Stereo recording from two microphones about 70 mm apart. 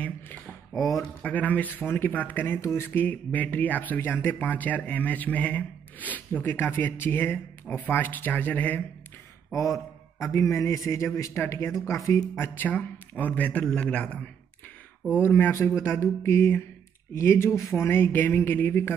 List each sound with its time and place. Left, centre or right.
1.2 s speech: left
10.3 s speech: left
12.5 s a man's voice: left
15.1 s a sound: left
17.7 s speech: left